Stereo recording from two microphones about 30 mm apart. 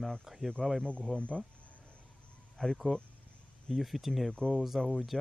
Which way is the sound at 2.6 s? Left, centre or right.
Left.